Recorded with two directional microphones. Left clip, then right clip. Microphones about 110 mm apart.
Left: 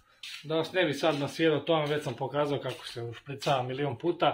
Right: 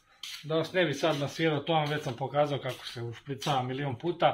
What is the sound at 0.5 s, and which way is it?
A man's voice, 25° left (ahead or behind).